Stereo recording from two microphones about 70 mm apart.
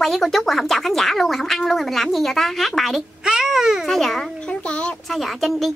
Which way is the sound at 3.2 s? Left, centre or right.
Centre.